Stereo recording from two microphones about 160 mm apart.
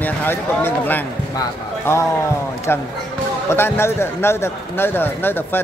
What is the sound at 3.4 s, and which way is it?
Speech, 15° left (ahead or behind).